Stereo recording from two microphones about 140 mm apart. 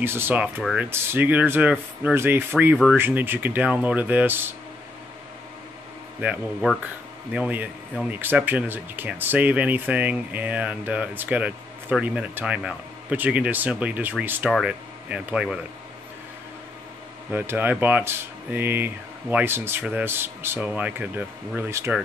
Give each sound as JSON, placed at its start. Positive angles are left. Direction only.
{"t": 0.0, "sound": "speech", "side_deg": -15}
{"t": 7.3, "sound": "speech", "side_deg": -10}
{"t": 17.3, "sound": "speech", "side_deg": -15}